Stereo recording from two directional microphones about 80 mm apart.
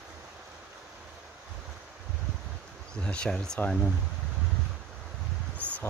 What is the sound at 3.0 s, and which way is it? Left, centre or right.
Speech, centre.